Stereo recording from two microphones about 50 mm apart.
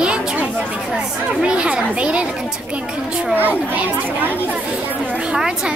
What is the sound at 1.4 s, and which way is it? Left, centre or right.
Speech, right.